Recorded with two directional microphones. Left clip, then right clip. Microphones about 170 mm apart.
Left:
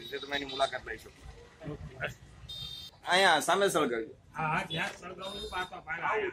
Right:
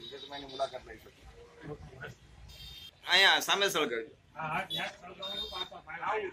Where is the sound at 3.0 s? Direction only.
40° left (ahead or behind).